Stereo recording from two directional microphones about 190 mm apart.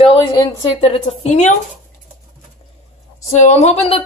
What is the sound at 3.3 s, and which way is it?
Speech, 35° left (ahead or behind).